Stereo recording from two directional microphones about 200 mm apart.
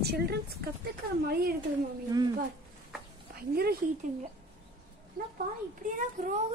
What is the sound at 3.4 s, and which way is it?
Speech, 50° right (ahead or behind).